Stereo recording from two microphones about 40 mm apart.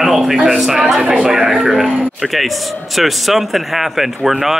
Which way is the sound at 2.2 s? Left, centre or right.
Centre.